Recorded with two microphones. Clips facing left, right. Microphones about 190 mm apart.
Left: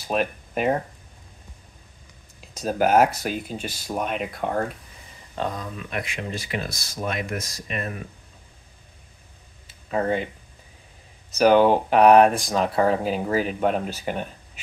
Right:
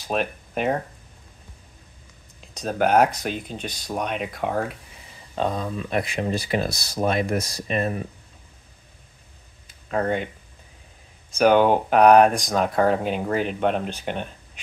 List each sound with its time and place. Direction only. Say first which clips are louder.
0.1 s speech: left 1 dB; centre (ahead or behind)
2.5 s speech: even; 5° left (ahead or behind)
5.3 s speech: right 4 dB; 20° right (ahead or behind)
5.8 s speech: right 6 dB; 35° right (ahead or behind)
9.7 s a sound: even; 5° left (ahead or behind)
11.3 s speech: left 1 dB; 5° left (ahead or behind)